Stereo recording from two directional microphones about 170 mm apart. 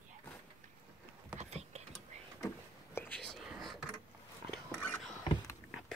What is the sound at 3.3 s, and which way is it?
Whispering, centre (ahead or behind).